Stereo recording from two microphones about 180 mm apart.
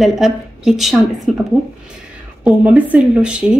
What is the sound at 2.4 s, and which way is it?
A woman's voice, 10° right (ahead or behind).